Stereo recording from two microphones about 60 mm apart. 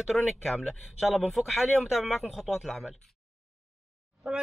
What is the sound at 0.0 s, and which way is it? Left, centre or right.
A man's voice, centre.